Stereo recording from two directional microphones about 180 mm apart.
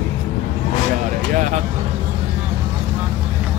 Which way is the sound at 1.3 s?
40° right (ahead or behind).